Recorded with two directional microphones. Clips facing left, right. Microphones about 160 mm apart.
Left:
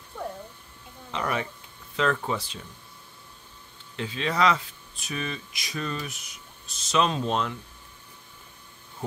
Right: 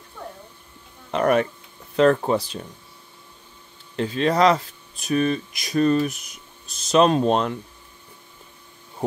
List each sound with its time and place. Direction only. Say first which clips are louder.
1.1 s speech: right 10 dB; 55° right (ahead or behind)
2.0 s speech: right 9 dB; 45° right (ahead or behind)
3.9 s speech: right 8 dB; 45° right (ahead or behind)